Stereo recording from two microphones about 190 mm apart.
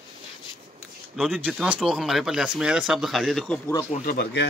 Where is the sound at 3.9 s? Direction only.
40° left (ahead or behind).